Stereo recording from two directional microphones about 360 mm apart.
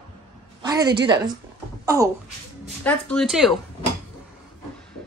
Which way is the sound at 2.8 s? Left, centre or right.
Centre.